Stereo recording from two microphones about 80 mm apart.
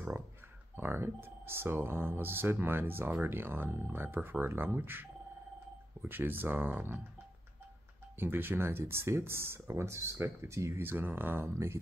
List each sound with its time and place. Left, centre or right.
0.7 s speech: right
6.0 s speech: right
8.2 s speech: right
10.9 s speech: right